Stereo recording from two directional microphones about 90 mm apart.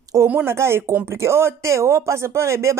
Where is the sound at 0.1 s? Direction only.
35° right (ahead or behind).